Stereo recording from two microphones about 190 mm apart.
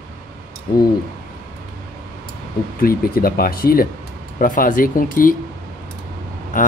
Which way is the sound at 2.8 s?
50° left (ahead or behind).